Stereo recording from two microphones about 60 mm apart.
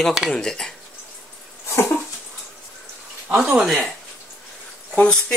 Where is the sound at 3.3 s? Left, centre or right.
Right.